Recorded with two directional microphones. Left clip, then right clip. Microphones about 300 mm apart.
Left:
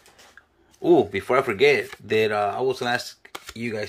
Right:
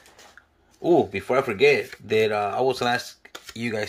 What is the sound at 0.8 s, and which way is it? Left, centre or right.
Speech, centre.